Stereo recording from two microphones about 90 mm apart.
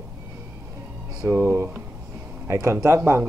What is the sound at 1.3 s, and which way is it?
A man's voice, 30° right (ahead or behind).